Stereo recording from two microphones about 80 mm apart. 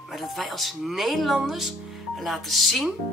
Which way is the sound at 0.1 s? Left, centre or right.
Centre.